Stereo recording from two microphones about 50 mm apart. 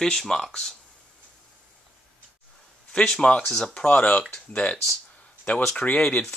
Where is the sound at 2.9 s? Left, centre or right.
Centre.